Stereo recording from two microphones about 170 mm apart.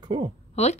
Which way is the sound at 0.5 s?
40° left (ahead or behind).